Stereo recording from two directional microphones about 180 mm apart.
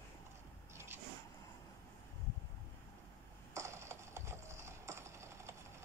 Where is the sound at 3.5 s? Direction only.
15° right (ahead or behind).